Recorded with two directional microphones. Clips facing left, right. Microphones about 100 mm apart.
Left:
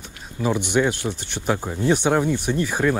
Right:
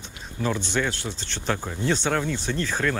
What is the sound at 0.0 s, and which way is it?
Speech, 15° left (ahead or behind).